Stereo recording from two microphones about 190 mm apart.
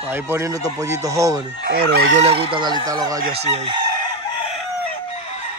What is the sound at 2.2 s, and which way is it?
Speech, 30° right (ahead or behind).